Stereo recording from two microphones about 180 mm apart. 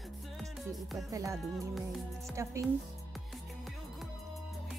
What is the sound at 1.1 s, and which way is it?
Music, 20° right (ahead or behind).